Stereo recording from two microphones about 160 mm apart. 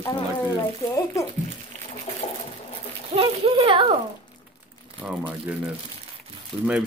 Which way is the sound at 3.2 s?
35° right (ahead or behind).